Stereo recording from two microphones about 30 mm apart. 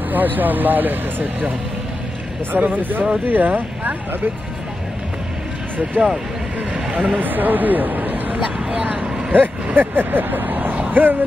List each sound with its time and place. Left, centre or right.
0.1 s speech: right
2.5 s speech: right
6.7 s speech: right
7.2 s speech: right